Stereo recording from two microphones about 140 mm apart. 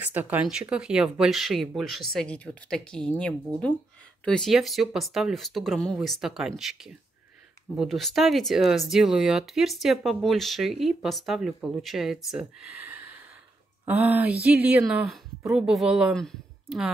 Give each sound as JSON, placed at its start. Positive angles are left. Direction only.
{"t": 0.0, "sound": "speech", "side_deg": -15}
{"t": 4.2, "sound": "speech", "side_deg": 5}